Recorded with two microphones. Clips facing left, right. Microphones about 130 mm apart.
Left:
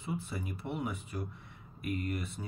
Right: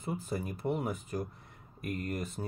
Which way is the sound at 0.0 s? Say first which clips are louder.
Right 3 dB; 40° right (ahead or behind).